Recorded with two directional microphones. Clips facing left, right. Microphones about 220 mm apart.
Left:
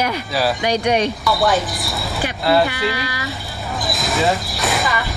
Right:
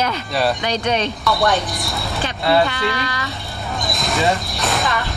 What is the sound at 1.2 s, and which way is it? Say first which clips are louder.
Speech: left 1 dB; centre (ahead or behind).